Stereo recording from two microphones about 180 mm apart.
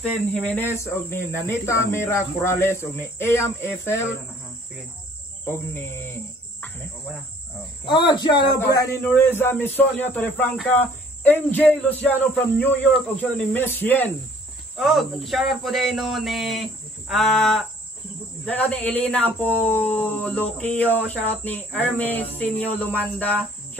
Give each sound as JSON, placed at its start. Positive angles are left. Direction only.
{"t": 0.3, "sound": "speech", "side_deg": 10}
{"t": 5.4, "sound": "speech", "side_deg": 10}
{"t": 7.8, "sound": "speech", "side_deg": 25}
{"t": 8.7, "sound": "speech", "side_deg": 15}
{"t": 14.8, "sound": "speech", "side_deg": 0}